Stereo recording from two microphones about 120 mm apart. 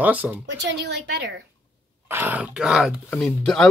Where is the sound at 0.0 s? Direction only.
15° right (ahead or behind).